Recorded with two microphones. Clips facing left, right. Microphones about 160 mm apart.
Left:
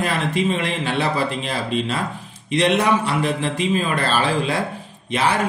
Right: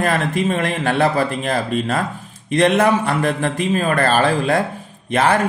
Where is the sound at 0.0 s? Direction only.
50° right (ahead or behind).